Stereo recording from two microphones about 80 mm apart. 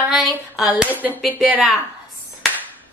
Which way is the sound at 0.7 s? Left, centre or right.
Centre.